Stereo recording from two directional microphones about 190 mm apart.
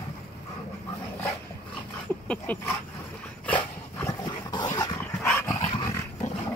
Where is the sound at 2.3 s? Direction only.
10° left (ahead or behind).